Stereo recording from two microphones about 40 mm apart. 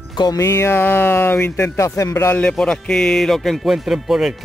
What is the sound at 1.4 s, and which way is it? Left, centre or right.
Speech, left.